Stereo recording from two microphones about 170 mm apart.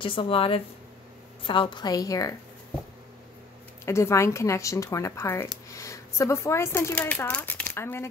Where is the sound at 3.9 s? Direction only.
15° left (ahead or behind).